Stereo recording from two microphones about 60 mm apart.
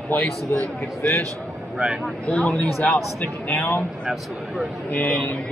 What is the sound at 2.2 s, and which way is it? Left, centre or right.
Speech, centre.